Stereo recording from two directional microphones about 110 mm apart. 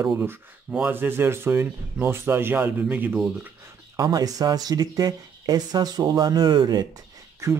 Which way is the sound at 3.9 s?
35° right (ahead or behind).